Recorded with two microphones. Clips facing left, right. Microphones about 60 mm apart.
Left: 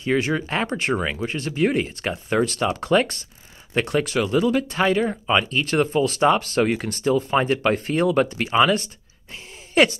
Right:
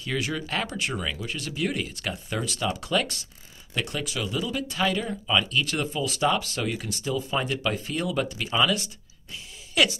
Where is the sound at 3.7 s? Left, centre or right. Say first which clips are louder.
Left 9 dB; left.